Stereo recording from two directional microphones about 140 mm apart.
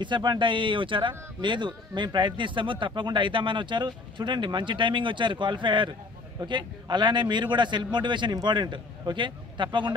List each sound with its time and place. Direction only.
0.0 s a man's voice: 35° right (ahead or behind)